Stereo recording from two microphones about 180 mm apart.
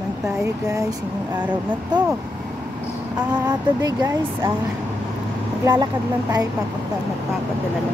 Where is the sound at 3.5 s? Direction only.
20° right (ahead or behind).